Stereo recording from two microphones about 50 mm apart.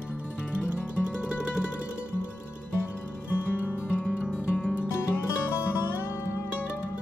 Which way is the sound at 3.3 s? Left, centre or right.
Left.